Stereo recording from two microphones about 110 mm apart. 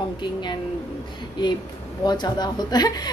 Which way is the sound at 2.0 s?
40° left (ahead or behind).